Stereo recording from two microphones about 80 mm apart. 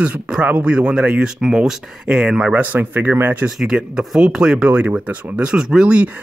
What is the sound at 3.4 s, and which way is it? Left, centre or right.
Speech, centre.